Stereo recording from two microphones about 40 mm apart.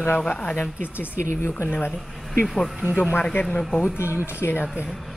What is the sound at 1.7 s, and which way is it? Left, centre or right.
Speech, left.